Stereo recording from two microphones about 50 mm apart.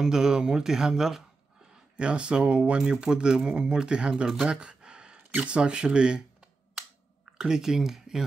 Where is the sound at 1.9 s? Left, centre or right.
Right.